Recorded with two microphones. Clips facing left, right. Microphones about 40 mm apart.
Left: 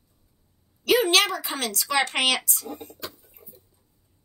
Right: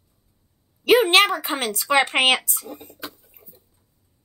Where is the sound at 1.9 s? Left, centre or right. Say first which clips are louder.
Right 5 dB; right.